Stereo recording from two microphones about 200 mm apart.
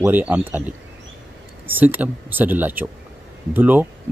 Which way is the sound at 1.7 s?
10° right (ahead or behind).